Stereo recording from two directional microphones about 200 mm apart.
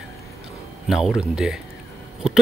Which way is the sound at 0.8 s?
Centre (ahead or behind).